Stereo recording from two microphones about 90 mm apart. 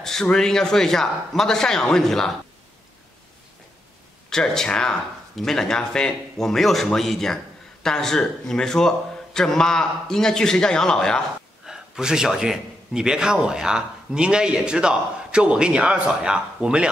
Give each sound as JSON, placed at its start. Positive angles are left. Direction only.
{"t": 0.0, "sound": "speech", "side_deg": 5}
{"t": 4.3, "sound": "a man's voice", "side_deg": 5}
{"t": 11.6, "sound": "a man's voice", "side_deg": -5}